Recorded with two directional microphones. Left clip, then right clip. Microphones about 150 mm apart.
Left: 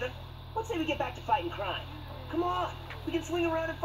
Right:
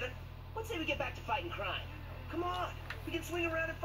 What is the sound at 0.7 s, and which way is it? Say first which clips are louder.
Speech: left 3 dB; 5° left (ahead or behind).